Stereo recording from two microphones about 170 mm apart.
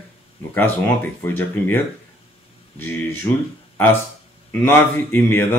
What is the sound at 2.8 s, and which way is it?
Speech, 10° left (ahead or behind).